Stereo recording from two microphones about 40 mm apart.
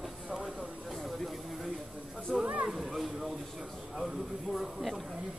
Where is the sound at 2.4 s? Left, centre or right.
Right.